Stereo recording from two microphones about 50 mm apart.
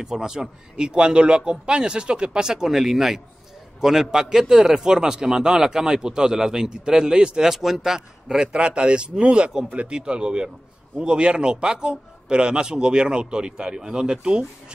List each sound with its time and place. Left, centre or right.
0.0 s a man's voice: centre
8.5 s a man's voice: right